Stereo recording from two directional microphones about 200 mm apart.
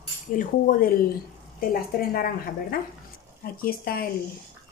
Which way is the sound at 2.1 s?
45° left (ahead or behind).